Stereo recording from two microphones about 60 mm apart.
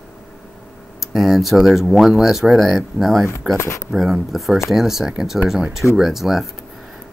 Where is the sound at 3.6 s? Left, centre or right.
Left.